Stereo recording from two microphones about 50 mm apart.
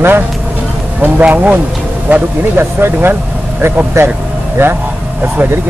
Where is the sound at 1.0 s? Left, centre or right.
Right.